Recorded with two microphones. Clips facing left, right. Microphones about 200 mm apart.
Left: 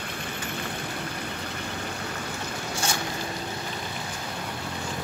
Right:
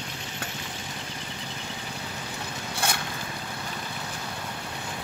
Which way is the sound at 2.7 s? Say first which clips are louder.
Even; 60° right (ahead or behind).